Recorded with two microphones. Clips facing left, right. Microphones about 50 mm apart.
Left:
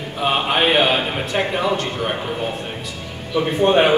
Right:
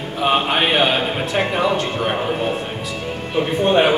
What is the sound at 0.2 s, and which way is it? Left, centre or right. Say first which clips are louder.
Speech: right 1 dB; centre.